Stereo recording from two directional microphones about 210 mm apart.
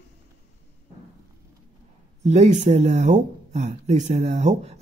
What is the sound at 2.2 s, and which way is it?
Speech, 35° right (ahead or behind).